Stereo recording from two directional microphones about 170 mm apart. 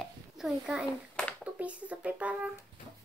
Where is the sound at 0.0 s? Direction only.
Centre (ahead or behind).